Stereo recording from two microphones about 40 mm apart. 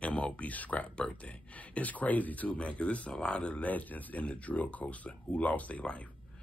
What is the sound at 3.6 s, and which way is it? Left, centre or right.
Speech, left.